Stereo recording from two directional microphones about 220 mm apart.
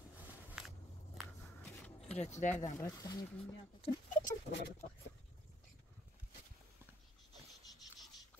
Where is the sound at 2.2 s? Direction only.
30° left (ahead or behind).